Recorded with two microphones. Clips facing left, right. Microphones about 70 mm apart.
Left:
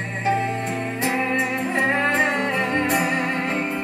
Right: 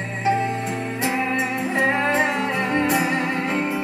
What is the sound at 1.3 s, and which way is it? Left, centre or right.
Music, left.